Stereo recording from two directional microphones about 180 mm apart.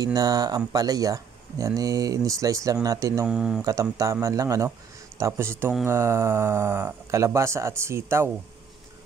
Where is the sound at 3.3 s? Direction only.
5° right (ahead or behind).